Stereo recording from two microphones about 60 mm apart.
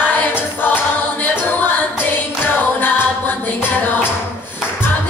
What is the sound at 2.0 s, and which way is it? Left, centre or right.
Music, left.